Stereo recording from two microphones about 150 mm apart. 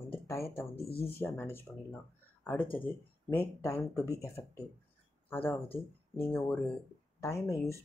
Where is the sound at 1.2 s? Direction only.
15° left (ahead or behind).